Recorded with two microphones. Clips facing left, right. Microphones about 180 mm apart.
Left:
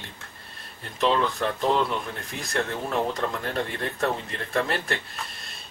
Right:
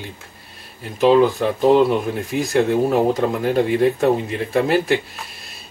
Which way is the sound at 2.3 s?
Centre (ahead or behind).